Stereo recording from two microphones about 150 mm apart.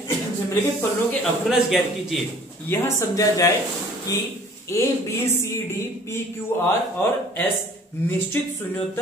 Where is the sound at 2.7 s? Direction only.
20° left (ahead or behind).